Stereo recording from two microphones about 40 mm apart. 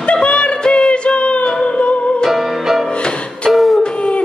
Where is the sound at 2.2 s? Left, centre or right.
Centre.